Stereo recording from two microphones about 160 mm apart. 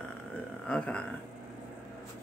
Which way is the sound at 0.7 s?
5° left (ahead or behind).